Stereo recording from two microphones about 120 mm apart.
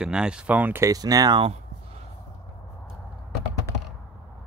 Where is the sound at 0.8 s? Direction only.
30° right (ahead or behind).